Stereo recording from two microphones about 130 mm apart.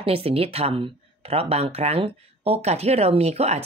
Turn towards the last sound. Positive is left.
turn(degrees=-55)  # may be behind; listen again after turning